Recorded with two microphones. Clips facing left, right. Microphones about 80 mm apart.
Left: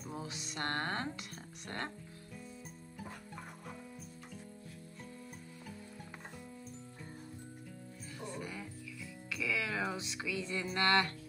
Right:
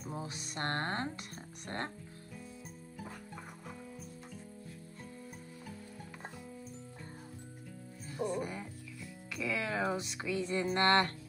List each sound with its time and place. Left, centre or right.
0.1 s music: right
8.2 s speech: centre
9.3 s music: right
10.5 s a sound: right